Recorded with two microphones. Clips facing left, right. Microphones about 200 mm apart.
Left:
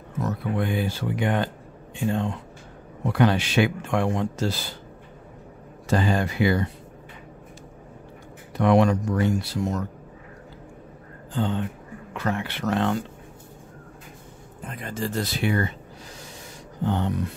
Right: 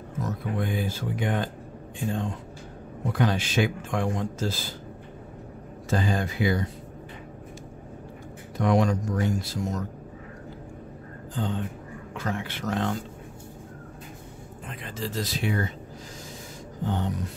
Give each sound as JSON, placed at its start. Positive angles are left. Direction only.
{"t": 0.2, "sound": "speech", "side_deg": 70}
{"t": 5.9, "sound": "speech", "side_deg": 70}
{"t": 8.5, "sound": "speech", "side_deg": 65}
{"t": 11.3, "sound": "speech", "side_deg": 70}
{"t": 14.7, "sound": "speech", "side_deg": 45}
{"t": 16.8, "sound": "speech", "side_deg": 65}